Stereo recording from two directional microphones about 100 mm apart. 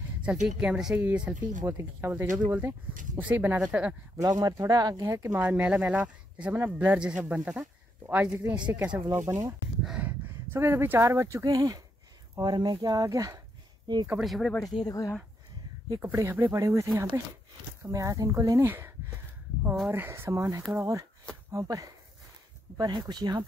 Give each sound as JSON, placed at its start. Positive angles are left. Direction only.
{"t": 0.2, "sound": "speech", "side_deg": -10}
{"t": 1.7, "sound": "speech", "side_deg": -25}
{"t": 4.2, "sound": "speech", "side_deg": -40}
{"t": 5.4, "sound": "speech", "side_deg": -15}
{"t": 9.3, "sound": "speech", "side_deg": -35}
{"t": 9.8, "sound": "a sound", "side_deg": -10}
{"t": 10.5, "sound": "speech", "side_deg": -25}
{"t": 14.2, "sound": "speech", "side_deg": 0}
{"t": 14.6, "sound": "speech", "side_deg": 40}
{"t": 16.0, "sound": "speech", "side_deg": -25}
{"t": 18.7, "sound": "a sound", "side_deg": -25}
{"t": 19.6, "sound": "speech", "side_deg": -5}
{"t": 19.9, "sound": "speech", "side_deg": -25}